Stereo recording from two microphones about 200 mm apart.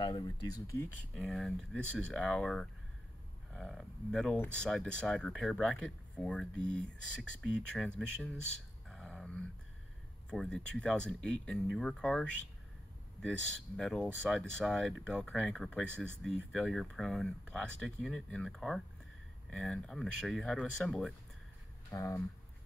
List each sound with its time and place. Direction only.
0.0 s speech: 20° left (ahead or behind)
1.1 s speech: centre (ahead or behind)
8.8 s a sound: 5° left (ahead or behind)
10.3 s speech: 5° left (ahead or behind)
21.9 s speech: 15° left (ahead or behind)